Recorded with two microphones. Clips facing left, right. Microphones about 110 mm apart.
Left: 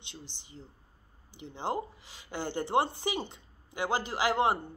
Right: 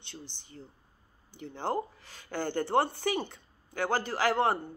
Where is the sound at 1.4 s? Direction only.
15° left (ahead or behind).